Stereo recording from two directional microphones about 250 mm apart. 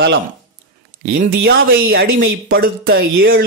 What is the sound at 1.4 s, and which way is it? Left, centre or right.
Speech, right.